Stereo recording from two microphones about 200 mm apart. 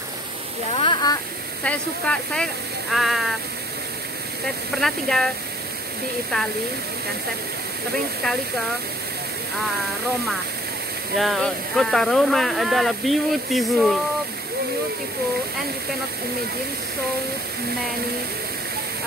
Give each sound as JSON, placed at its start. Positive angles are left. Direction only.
{"t": 0.7, "sound": "a sound", "side_deg": 25}
{"t": 1.6, "sound": "speech", "side_deg": 5}
{"t": 4.7, "sound": "speech", "side_deg": 0}
{"t": 11.1, "sound": "speech", "side_deg": 0}